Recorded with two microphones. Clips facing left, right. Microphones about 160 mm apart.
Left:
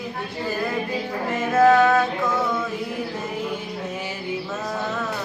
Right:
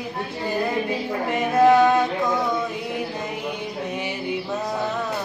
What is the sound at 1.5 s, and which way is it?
Music, 15° right (ahead or behind).